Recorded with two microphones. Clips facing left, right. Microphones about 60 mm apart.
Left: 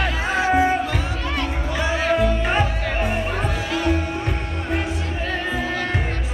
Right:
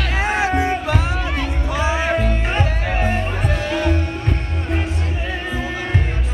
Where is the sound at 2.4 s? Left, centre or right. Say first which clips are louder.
Left 1 dB; centre.